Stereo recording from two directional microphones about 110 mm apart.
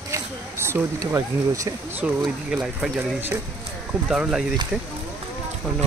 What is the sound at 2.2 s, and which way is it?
Speech, 5° right (ahead or behind).